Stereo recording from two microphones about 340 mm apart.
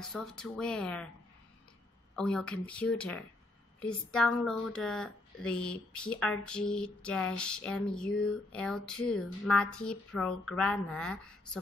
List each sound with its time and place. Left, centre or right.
0.0 s speech: centre
2.1 s speech: centre